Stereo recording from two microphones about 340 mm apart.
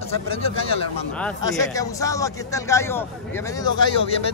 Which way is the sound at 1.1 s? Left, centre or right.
Centre.